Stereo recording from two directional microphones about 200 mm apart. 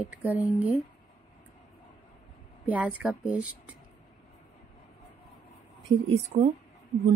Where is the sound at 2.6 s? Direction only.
5° right (ahead or behind).